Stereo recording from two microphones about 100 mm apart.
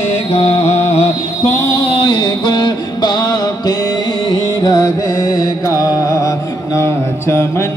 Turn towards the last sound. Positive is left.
turn(degrees=25)  # may be behind; listen again after turning